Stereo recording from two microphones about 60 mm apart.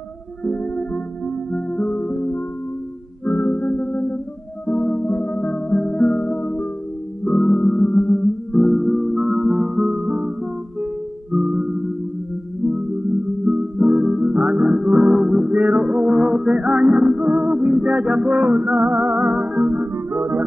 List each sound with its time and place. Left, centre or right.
0.5 s music: centre
8.5 s music: centre
11.3 s music: centre
13.5 s music: right
13.8 s music: centre
14.3 s music: right
14.6 s music: centre; by 20.4 s right